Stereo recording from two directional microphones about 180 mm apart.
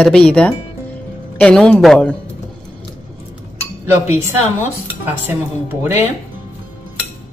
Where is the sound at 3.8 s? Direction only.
15° right (ahead or behind).